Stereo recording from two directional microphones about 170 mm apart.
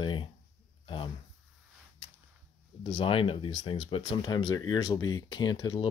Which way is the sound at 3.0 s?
30° left (ahead or behind).